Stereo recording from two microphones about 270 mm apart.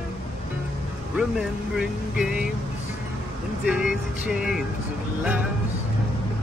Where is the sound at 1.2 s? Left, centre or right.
Centre.